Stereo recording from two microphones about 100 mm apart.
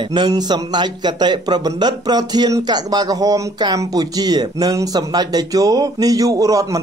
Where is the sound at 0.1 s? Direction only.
45° right (ahead or behind).